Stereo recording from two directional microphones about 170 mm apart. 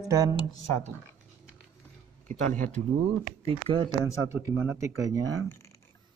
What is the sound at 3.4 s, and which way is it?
Speech, 35° right (ahead or behind).